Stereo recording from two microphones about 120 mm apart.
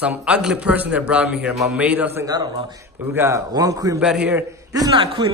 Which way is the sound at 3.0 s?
20° right (ahead or behind).